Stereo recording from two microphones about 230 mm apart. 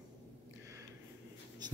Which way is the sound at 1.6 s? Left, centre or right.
Centre.